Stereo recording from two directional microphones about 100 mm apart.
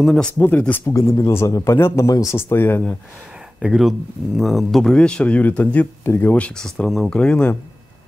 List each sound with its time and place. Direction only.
0.0 s speech: 5° left (ahead or behind)
0.4 s a man's voice: 20° left (ahead or behind)
3.5 s speech: 5° right (ahead or behind)